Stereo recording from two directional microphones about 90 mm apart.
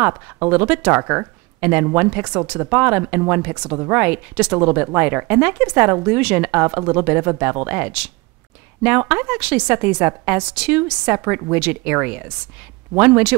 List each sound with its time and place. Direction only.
0.0 s speech: 20° right (ahead or behind)